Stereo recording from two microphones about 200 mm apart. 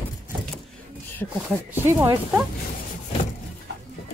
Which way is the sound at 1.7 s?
10° right (ahead or behind).